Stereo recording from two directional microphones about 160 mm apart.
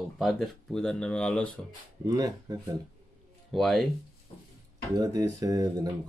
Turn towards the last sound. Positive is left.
turn(degrees=-20)  # may be behind; listen again after turning